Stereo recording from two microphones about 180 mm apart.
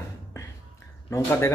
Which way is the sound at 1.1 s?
15° left (ahead or behind).